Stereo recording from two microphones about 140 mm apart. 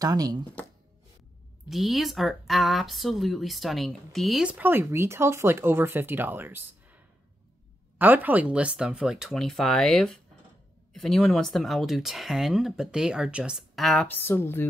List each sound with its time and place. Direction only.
0.0 s speech: 25° right (ahead or behind)
1.7 s speech: centre (ahead or behind)
8.0 s speech: 15° right (ahead or behind)
14.0 s speech: 15° left (ahead or behind)